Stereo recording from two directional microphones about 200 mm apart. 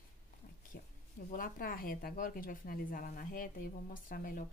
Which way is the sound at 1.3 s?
45° left (ahead or behind).